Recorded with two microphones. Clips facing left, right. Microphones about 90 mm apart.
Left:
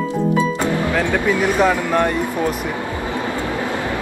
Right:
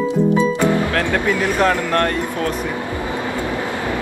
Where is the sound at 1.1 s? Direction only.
10° left (ahead or behind).